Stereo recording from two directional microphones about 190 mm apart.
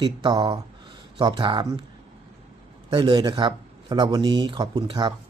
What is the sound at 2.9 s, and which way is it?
Speech, 25° right (ahead or behind).